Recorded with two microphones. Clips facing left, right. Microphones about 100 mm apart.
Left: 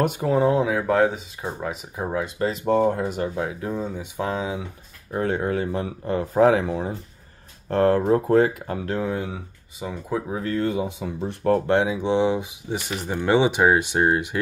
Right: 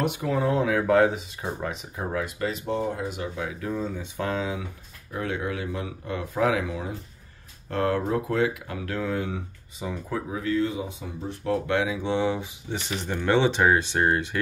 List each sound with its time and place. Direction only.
0.0 s speech: 45° left (ahead or behind)
0.3 s speech: 30° left (ahead or behind)
0.6 s speech: 15° left (ahead or behind)
0.8 s speech: centre (ahead or behind)
2.0 s speech: 25° left (ahead or behind)
2.6 s speech: 50° left (ahead or behind)
3.7 s speech: 15° left (ahead or behind)
5.1 s speech: 40° left (ahead or behind)
8.8 s speech: 25° left (ahead or behind)
10.3 s speech: 45° left (ahead or behind); by 11.6 s 60° left (ahead or behind)
11.6 s speech: 30° left (ahead or behind)